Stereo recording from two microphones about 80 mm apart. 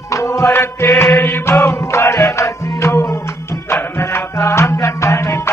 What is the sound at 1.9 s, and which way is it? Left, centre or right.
Music, left.